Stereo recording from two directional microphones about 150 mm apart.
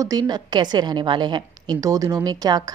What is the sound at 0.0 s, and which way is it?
A woman's voice, 25° right (ahead or behind).